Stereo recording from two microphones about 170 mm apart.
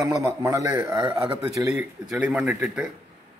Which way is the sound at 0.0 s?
15° right (ahead or behind).